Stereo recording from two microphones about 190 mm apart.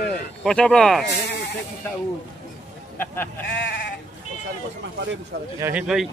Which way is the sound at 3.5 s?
80° left.